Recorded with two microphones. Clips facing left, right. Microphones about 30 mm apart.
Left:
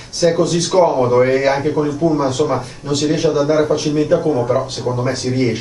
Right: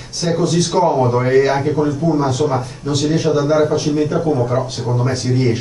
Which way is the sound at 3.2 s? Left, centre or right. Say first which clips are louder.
Left 1 dB; left.